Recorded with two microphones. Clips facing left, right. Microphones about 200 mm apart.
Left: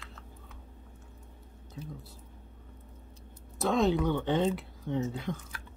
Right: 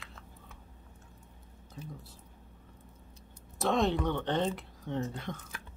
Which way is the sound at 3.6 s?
Centre (ahead or behind).